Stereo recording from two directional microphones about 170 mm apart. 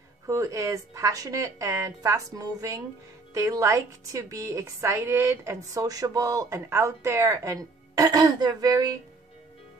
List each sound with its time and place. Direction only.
0.3 s a woman's voice: 20° right (ahead or behind)